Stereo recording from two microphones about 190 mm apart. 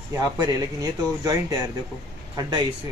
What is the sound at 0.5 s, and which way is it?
Speech, 20° right (ahead or behind).